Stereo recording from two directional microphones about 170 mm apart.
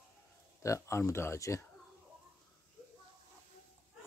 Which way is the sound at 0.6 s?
15° left (ahead or behind).